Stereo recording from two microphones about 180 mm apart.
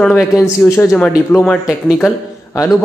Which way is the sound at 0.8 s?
5° left (ahead or behind).